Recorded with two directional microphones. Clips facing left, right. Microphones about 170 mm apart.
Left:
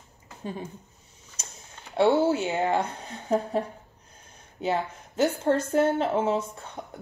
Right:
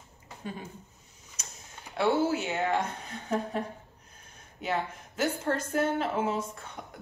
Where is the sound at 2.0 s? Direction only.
30° left (ahead or behind).